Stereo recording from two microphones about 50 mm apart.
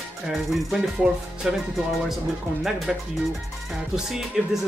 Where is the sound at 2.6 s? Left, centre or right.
Centre.